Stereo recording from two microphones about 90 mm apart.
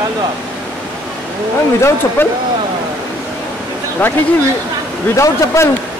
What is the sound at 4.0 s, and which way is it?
Speech, 20° left (ahead or behind).